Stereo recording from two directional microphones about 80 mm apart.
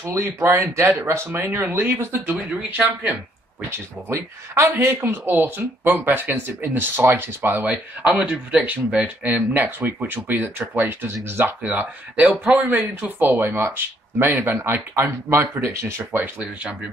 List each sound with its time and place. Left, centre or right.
0.0 s speech: right
2.3 s speech: centre
4.1 s speech: right
7.6 s speech: centre